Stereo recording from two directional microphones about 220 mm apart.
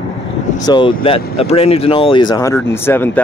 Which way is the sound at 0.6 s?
20° left (ahead or behind).